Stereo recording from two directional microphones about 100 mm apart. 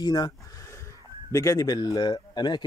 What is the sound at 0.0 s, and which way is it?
Speech, 45° left (ahead or behind).